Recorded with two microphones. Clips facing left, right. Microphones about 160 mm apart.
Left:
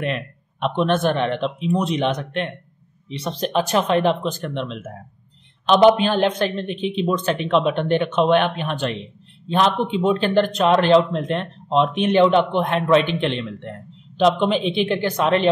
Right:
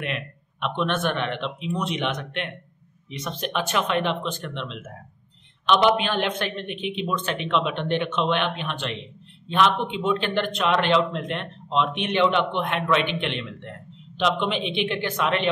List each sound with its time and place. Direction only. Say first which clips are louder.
0.0 s a man's voice: left 6 dB; 35° left (ahead or behind)